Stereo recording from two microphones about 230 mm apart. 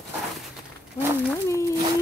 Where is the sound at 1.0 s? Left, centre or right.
Centre.